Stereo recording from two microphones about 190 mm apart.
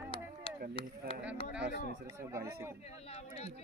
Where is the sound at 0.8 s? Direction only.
30° left (ahead or behind).